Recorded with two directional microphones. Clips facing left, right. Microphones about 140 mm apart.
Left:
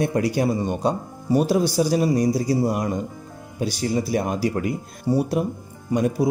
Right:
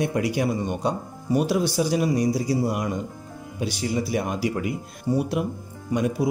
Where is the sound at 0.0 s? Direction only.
35° left (ahead or behind).